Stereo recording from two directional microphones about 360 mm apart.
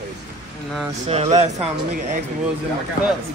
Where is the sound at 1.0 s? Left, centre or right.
Centre.